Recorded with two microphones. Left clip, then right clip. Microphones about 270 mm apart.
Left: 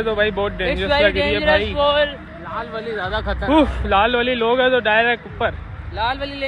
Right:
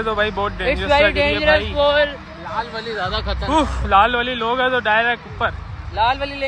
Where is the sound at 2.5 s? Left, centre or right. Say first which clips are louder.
Right 1 dB; left.